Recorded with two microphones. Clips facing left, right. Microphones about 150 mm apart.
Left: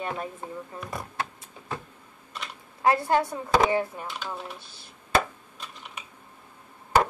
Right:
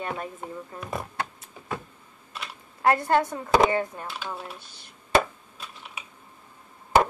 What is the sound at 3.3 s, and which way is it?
Speech, 20° right (ahead or behind).